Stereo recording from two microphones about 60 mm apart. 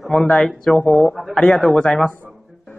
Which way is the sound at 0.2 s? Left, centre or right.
Centre.